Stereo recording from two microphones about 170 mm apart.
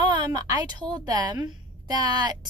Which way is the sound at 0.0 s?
25° right (ahead or behind).